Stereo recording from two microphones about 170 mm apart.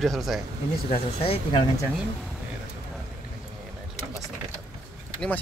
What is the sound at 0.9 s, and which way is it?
Speech, 35° left (ahead or behind).